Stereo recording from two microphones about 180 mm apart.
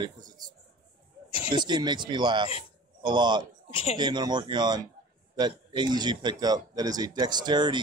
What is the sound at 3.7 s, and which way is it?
Speech, 30° left (ahead or behind).